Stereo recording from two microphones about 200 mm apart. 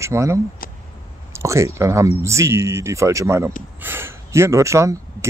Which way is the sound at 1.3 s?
15° right (ahead or behind).